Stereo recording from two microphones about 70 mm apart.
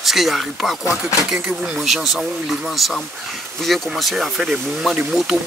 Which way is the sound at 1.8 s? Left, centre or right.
Centre.